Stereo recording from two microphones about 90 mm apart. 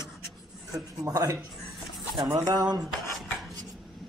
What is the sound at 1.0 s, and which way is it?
Speech, 40° right (ahead or behind).